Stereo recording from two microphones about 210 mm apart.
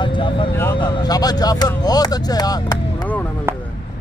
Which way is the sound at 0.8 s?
20° left (ahead or behind).